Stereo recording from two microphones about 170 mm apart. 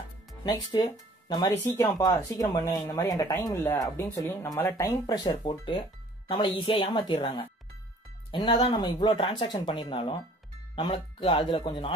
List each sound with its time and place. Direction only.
0.4 s speech: 25° left (ahead or behind)